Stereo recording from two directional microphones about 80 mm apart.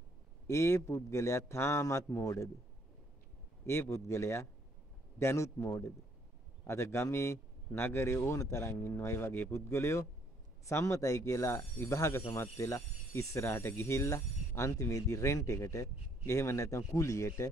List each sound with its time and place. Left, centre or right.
0.5 s speech: left
3.6 s speech: left